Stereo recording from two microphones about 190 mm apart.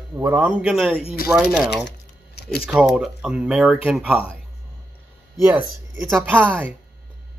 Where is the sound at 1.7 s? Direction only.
60° left (ahead or behind).